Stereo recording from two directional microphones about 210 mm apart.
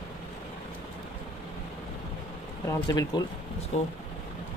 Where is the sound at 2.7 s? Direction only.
15° left (ahead or behind).